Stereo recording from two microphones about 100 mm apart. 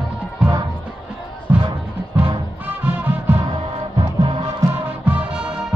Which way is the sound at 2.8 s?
20° right (ahead or behind).